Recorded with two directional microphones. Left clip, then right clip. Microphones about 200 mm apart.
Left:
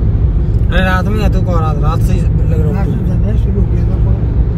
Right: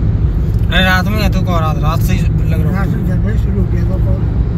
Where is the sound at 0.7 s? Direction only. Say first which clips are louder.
Right 2 dB; 35° left (ahead or behind).